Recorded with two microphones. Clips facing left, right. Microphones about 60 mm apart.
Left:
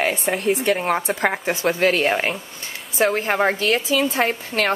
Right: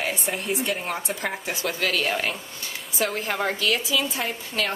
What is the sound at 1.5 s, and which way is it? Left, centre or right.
Speech, left.